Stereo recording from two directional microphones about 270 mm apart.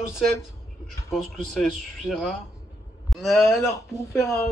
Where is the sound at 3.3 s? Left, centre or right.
Centre.